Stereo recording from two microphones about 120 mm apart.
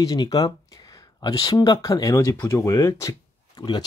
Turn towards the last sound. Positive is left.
turn(degrees=35)  # may be behind; listen again after turning